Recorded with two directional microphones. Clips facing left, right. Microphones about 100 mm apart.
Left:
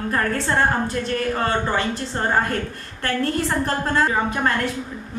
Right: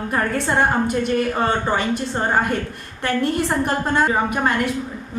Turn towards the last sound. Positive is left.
turn(degrees=-15)  # may be behind; listen again after turning